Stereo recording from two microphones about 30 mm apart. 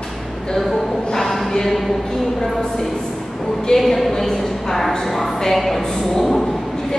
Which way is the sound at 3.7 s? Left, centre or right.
Centre.